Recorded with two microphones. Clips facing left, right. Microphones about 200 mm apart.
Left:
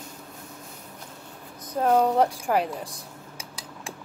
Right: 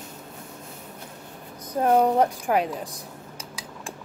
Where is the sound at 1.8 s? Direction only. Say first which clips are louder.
Right 1 dB; 5° right (ahead or behind).